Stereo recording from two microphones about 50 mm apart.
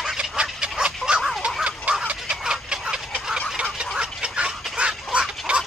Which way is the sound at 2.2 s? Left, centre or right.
Centre.